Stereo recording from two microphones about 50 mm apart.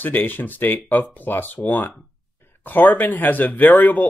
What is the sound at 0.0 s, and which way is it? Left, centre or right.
Speech, left.